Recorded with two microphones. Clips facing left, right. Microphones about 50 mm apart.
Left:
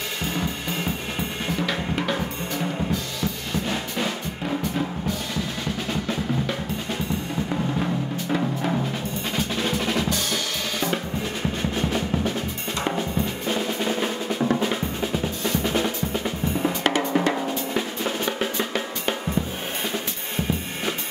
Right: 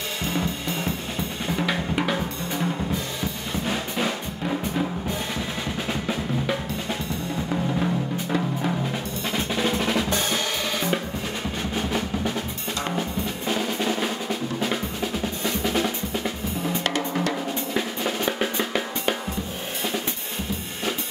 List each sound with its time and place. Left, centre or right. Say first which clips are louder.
1.7 s drum: right 1 dB; centre
2.9 s drum kit: left 1 dB; centre
4.0 s drum: right 1 dB; centre
5.9 s drum: left 1 dB; centre
7.8 s timpani: right 1 dB; centre
9.6 s music: right 2 dB; centre
10.0 s drum kit: right 1 dB; centre
13.5 s drum: right 2 dB; centre
15.6 s drum: right 1 dB; centre
16.6 s drum kit: left 3 dB; left
17.1 s drum: left 4 dB; centre
18.2 s drum: right 2 dB; centre